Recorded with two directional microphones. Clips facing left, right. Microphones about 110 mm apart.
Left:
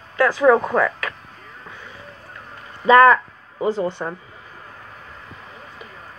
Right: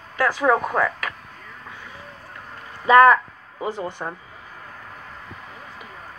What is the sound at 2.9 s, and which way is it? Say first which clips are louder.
Speech: left 1 dB; 10° right (ahead or behind).